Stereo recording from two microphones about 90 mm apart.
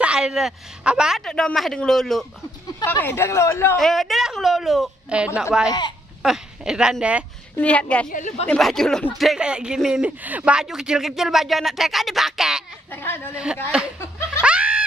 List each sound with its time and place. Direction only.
0.0 s speech: 10° right (ahead or behind)
1.2 s speech: 5° left (ahead or behind)
2.8 s a woman's voice: 25° left (ahead or behind)
3.7 s speech: 5° left (ahead or behind)
5.1 s speech: 15° right (ahead or behind)
5.7 s speech: 55° left (ahead or behind)
6.2 s speech: 5° right (ahead or behind)
7.5 s a woman's voice: 15° left (ahead or behind)
8.5 s speech: 5° left (ahead or behind)
9.2 s speech: 5° right (ahead or behind)
12.9 s a woman's voice: 25° left (ahead or behind)
13.3 s speech: 10° right (ahead or behind)
14.4 s snicker: 10° right (ahead or behind)